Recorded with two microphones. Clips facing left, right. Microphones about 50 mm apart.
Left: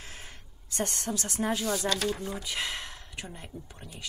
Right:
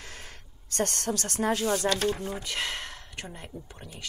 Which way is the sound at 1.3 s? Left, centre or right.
Right.